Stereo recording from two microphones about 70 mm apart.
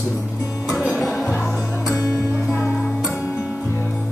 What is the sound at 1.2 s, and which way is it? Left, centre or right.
Music, centre.